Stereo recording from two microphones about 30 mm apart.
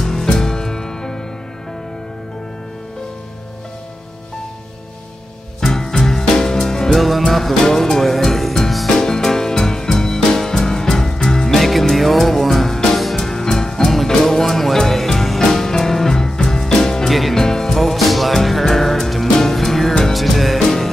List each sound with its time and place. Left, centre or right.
0.0 s music: centre
5.7 s music: centre
7.0 s music: centre
17.7 s music: centre
20.1 s music: centre
20.5 s music: centre